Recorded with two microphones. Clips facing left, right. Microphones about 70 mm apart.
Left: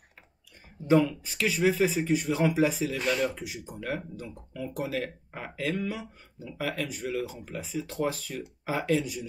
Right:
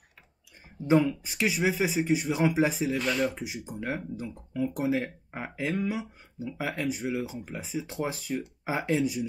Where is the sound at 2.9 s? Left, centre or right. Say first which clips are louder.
Even; centre.